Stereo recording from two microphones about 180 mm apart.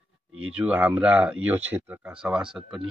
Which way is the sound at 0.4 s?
5° right (ahead or behind).